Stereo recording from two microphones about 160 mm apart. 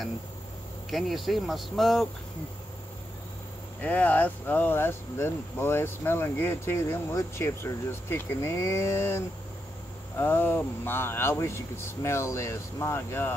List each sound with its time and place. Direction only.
0.8 s speech: centre (ahead or behind)
3.8 s speech: 10° left (ahead or behind)